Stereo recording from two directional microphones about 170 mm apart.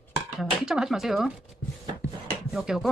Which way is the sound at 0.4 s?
5° right (ahead or behind).